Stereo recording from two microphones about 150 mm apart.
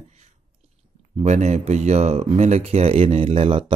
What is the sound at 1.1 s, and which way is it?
Speech, 50° right (ahead or behind).